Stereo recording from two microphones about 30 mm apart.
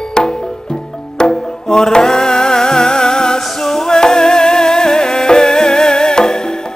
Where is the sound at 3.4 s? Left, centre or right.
Centre.